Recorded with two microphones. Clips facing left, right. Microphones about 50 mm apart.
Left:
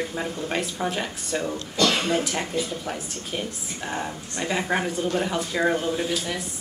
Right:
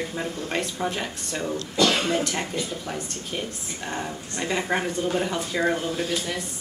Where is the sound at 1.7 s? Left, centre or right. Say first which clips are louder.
Right 1 dB; centre.